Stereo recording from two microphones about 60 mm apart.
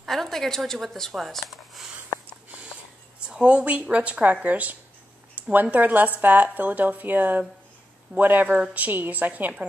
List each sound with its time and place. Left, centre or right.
0.0 s speech: centre
3.3 s speech: centre